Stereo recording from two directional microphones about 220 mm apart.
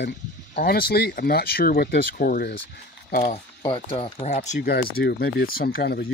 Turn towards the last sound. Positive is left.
turn(degrees=45)  # may be behind; listen again after turning